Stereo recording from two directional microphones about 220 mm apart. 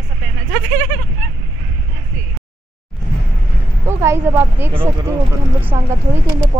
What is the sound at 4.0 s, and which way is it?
Speech, 15° right (ahead or behind).